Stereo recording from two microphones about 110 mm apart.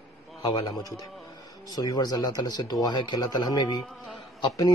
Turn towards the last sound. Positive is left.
turn(degrees=40)  # may be behind; listen again after turning